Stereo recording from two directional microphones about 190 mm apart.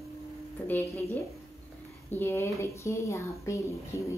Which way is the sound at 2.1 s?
10° left (ahead or behind).